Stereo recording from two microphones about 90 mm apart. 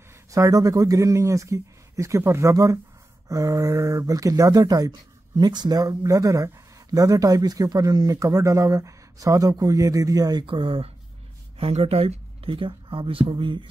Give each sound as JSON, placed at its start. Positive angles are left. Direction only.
{"t": 0.3, "sound": "speech", "side_deg": -40}
{"t": 10.4, "sound": "speech", "side_deg": -75}
{"t": 11.5, "sound": "speech", "side_deg": -90}